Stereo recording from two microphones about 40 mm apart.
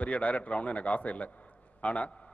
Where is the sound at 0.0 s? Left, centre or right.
Left.